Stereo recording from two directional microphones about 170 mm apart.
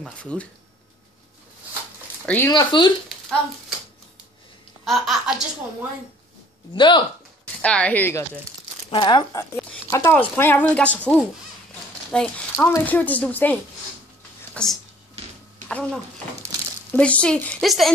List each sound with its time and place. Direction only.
0.0 s a woman's voice: 5° left (ahead or behind)
2.2 s speech: 10° left (ahead or behind)
2.5 s speech: 25° left (ahead or behind)
4.8 s speech: centre (ahead or behind)
6.7 s speech: 30° left (ahead or behind)
7.6 s a woman's voice: 5° left (ahead or behind)
8.9 s a woman's voice: 25° left (ahead or behind); by 17.9 s centre (ahead or behind)